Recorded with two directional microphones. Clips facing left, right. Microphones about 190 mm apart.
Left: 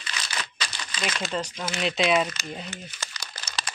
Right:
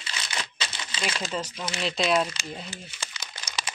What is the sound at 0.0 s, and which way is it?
Crumpling, 25° right (ahead or behind).